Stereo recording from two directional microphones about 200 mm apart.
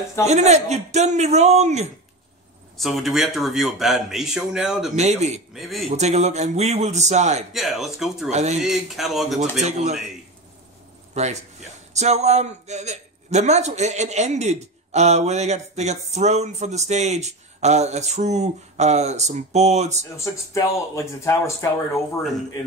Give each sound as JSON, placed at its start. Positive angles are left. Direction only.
{"t": 0.3, "sound": "a man's voice", "side_deg": -35}
{"t": 2.8, "sound": "speech", "side_deg": 0}
{"t": 4.9, "sound": "a man's voice", "side_deg": -35}
{"t": 5.5, "sound": "speech", "side_deg": 0}
{"t": 5.9, "sound": "a man's voice", "side_deg": -35}
{"t": 7.5, "sound": "speech", "side_deg": 0}
{"t": 8.3, "sound": "a man's voice", "side_deg": -35}
{"t": 8.5, "sound": "speech", "side_deg": 0}
{"t": 9.4, "sound": "a man's voice", "side_deg": -35}
{"t": 11.9, "sound": "a man's voice", "side_deg": -35}
{"t": 20.5, "sound": "speech", "side_deg": 15}